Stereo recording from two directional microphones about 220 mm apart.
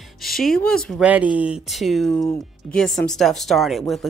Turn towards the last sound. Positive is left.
turn(degrees=0)  # may be behind; listen again after turning